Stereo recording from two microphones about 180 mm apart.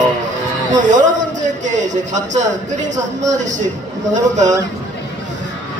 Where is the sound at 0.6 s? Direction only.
45° right (ahead or behind).